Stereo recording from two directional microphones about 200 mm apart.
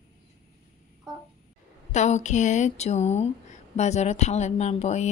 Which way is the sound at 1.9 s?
35° left (ahead or behind).